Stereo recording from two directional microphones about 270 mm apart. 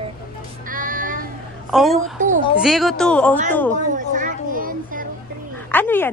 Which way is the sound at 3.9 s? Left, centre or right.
Right.